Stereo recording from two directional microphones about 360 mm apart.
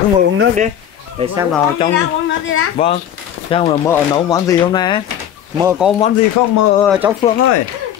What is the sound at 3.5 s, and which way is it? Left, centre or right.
Speech, centre.